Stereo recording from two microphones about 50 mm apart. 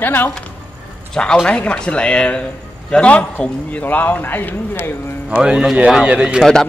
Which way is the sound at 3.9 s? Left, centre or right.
Left.